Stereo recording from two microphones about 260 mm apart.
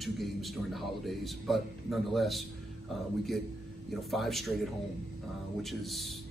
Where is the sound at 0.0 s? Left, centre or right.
Centre.